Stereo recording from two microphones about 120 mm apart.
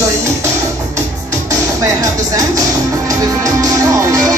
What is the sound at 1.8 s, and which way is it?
Music, 30° right (ahead or behind).